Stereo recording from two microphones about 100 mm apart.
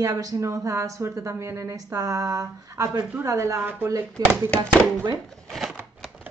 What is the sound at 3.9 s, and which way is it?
Speech, 30° right (ahead or behind).